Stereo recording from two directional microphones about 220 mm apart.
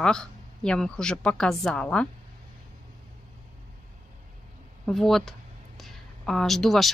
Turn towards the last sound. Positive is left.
turn(degrees=0)  # may be behind; listen again after turning